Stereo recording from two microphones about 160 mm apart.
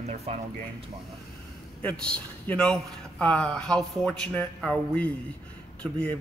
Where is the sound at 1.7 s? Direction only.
5° left (ahead or behind).